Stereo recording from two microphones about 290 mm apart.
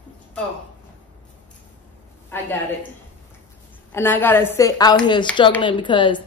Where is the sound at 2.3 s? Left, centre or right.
Centre.